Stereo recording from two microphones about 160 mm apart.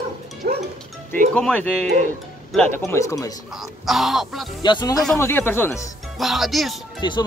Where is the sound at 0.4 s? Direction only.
75° right (ahead or behind).